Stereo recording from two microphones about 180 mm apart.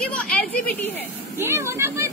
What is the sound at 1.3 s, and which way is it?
Speech, 15° right (ahead or behind).